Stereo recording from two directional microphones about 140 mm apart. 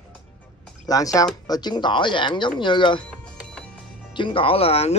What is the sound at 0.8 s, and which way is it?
Speech, 25° left (ahead or behind).